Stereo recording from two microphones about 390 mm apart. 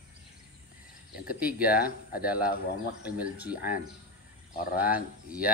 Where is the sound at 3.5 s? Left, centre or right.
Left.